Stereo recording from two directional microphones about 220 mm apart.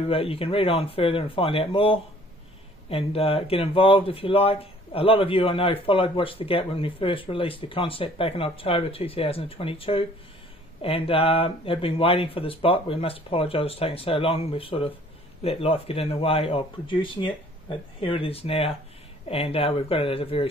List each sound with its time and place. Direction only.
0.1 s speech: 25° left (ahead or behind)